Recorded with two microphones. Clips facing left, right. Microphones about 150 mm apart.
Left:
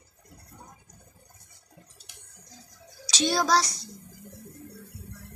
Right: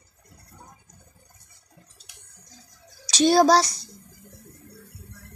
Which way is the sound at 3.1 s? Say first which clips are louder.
Right 8 dB; 40° right (ahead or behind).